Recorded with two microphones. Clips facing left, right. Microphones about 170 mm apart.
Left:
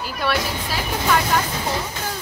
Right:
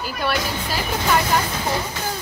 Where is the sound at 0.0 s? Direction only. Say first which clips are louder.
Even; centre (ahead or behind).